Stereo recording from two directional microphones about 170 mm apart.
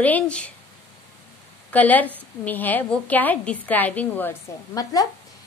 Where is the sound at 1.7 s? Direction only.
10° left (ahead or behind).